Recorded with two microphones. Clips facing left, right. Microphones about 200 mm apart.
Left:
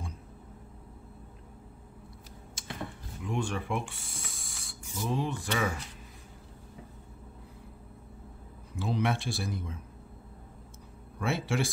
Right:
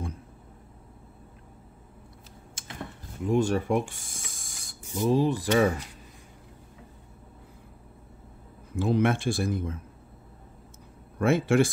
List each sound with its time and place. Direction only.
2.6 s a sound: 55° right (ahead or behind)
3.2 s speech: 40° right (ahead or behind)
8.7 s speech: 50° right (ahead or behind)
11.1 s speech: 55° right (ahead or behind)